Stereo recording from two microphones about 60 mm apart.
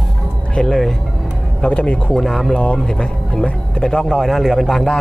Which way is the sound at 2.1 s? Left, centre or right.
Centre.